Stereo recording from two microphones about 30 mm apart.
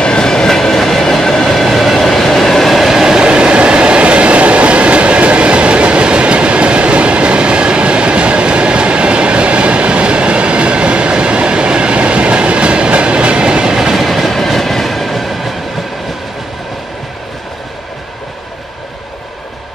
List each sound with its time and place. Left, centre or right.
0.0 s train: left; by 1.7 s centre
1.7 s train: centre
2.8 s train: centre
3.3 s train: right
13.9 s train: centre
14.3 s train: centre